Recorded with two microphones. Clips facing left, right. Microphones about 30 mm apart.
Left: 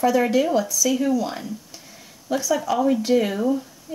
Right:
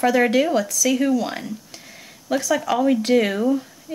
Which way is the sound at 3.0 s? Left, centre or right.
Right.